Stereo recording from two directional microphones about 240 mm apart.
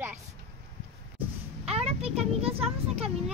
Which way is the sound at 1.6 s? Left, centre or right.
Right.